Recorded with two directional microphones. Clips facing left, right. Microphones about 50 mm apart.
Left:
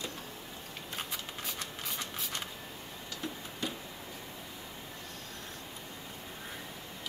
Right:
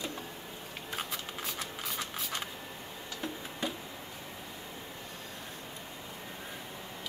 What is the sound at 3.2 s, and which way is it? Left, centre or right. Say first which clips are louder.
Tick-tock: right 1 dB; right.